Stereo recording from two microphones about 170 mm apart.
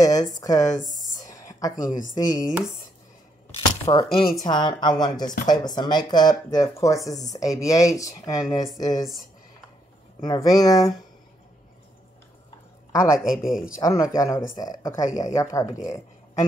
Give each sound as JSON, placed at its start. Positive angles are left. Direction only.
{"t": 0.0, "sound": "speech", "side_deg": 20}
{"t": 0.7, "sound": "a sound", "side_deg": 50}
{"t": 1.3, "sound": "a sound", "side_deg": 20}
{"t": 2.1, "sound": "speech", "side_deg": 20}
{"t": 2.4, "sound": "speech", "side_deg": -5}
{"t": 3.5, "sound": "a sound", "side_deg": 30}
{"t": 4.5, "sound": "speech", "side_deg": 25}
{"t": 10.2, "sound": "speech", "side_deg": 20}
{"t": 13.2, "sound": "speech", "side_deg": -5}
{"t": 13.8, "sound": "speech", "side_deg": 20}